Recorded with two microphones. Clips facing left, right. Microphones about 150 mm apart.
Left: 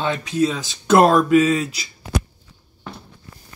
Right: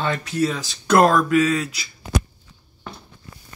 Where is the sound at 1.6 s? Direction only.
30° left (ahead or behind).